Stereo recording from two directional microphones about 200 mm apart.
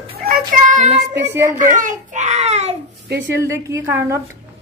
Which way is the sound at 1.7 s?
40° right (ahead or behind).